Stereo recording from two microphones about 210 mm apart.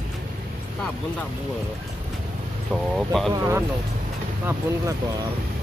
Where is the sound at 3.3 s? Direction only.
15° right (ahead or behind).